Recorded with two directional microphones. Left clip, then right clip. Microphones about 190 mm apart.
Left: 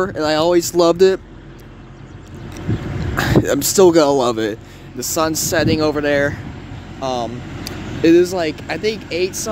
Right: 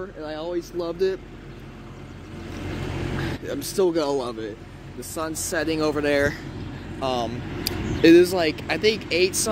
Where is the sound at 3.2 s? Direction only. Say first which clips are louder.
Left 19 dB; 40° left (ahead or behind).